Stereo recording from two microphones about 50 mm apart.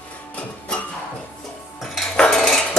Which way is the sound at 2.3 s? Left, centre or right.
Centre.